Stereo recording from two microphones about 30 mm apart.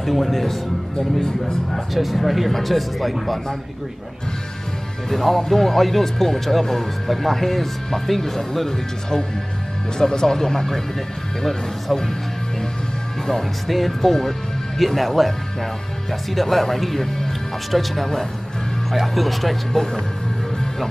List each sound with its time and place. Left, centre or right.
0.0 s speech: centre
2.0 s speech: centre
5.1 s speech: centre
13.3 s speech: centre
19.7 s speech: centre